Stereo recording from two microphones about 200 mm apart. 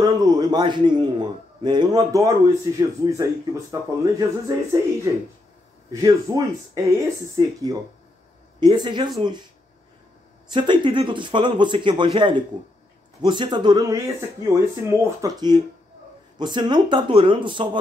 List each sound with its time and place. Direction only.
0.0 s a man's voice: 20° right (ahead or behind)
10.5 s a man's voice: 25° right (ahead or behind)